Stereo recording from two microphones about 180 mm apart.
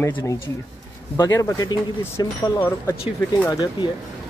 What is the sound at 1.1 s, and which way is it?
Speech, 20° left (ahead or behind).